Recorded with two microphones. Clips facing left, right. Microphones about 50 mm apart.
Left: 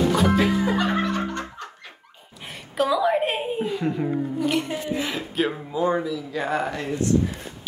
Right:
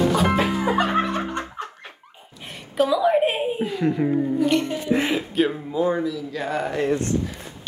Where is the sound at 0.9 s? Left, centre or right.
Right.